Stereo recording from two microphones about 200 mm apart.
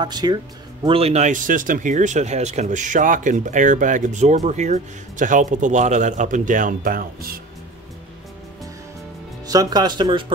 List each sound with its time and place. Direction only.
0.0 s speech: 20° right (ahead or behind); by 7.3 s 45° right (ahead or behind)
9.5 s speech: 20° right (ahead or behind)